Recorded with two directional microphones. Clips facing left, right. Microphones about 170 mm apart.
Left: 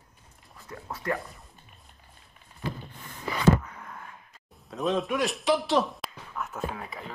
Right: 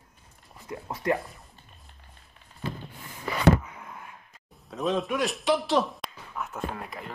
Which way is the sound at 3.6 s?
5° right (ahead or behind).